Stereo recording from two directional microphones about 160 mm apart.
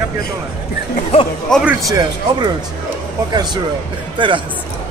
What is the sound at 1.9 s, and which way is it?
Speech, 25° right (ahead or behind).